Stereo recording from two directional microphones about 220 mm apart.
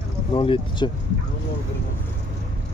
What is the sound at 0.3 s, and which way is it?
Speech, 20° left (ahead or behind).